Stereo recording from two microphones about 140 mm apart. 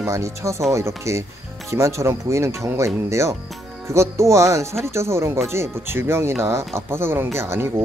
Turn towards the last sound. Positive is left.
turn(degrees=-15)  # may be behind; listen again after turning